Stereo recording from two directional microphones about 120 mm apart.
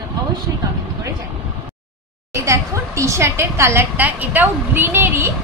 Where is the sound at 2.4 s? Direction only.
25° right (ahead or behind).